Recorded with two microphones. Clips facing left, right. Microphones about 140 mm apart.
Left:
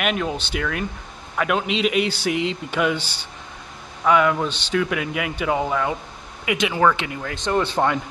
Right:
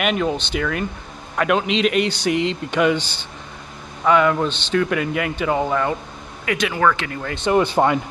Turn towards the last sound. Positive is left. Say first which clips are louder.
# right 4 dB
turn(degrees=-10)  # may be behind; listen again after turning